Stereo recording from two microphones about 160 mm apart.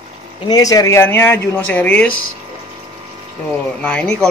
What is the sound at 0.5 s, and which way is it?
Speech, 20° left (ahead or behind).